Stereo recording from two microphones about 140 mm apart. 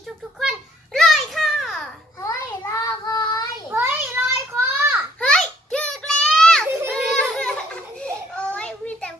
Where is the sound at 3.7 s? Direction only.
15° right (ahead or behind).